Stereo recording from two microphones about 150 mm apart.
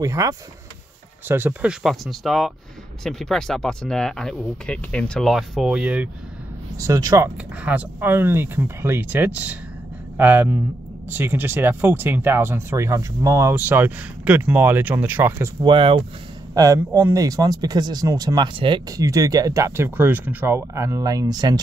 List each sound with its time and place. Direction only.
0.0 s speech: 20° right (ahead or behind)
6.8 s speech: 25° right (ahead or behind)
7.6 s speech: 10° right (ahead or behind)
15.6 s speech: 35° right (ahead or behind)
16.5 s speech: 25° right (ahead or behind)